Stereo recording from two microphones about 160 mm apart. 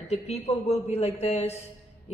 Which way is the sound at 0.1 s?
40° left (ahead or behind).